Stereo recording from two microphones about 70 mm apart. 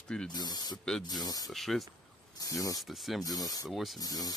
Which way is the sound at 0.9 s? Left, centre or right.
Centre.